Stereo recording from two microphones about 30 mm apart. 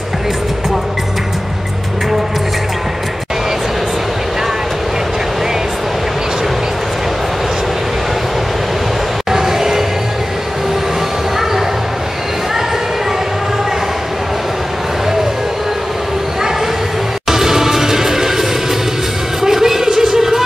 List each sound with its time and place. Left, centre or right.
9.3 s music: centre
17.3 s music: centre